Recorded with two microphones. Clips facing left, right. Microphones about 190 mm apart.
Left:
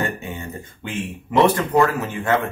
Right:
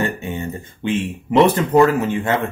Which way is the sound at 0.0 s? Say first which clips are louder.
Right 4 dB; 25° right (ahead or behind).